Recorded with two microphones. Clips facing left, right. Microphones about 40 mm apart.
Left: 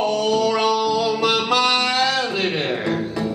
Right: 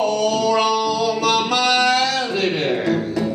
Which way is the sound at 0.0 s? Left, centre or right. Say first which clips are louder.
Right 2 dB; centre.